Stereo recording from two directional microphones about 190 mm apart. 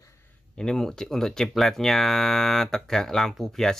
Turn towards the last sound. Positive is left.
turn(degrees=0)  # may be behind; listen again after turning